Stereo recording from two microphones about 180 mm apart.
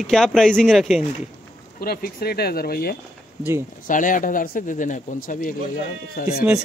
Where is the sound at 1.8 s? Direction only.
55° left (ahead or behind).